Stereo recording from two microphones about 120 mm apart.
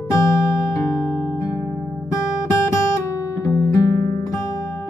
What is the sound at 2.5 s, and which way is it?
Music, 20° left (ahead or behind).